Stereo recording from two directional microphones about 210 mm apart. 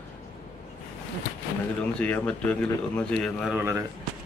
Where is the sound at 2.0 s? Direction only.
5° left (ahead or behind).